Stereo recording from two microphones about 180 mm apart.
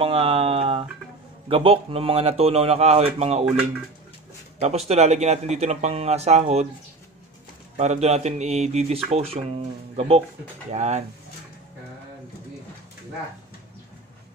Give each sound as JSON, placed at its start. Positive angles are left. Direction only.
{"t": 0.0, "sound": "a sound", "side_deg": -30}
{"t": 1.5, "sound": "speech", "side_deg": -30}
{"t": 7.7, "sound": "speech", "side_deg": -40}